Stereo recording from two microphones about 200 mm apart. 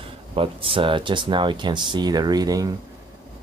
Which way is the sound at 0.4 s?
25° right (ahead or behind).